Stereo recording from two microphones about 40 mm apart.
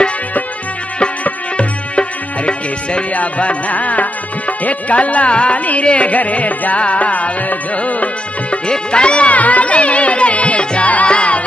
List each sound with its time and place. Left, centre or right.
1.2 s music: left
8.6 s music: left